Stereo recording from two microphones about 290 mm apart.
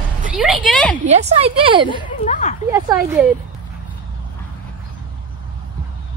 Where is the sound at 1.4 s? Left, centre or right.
Centre.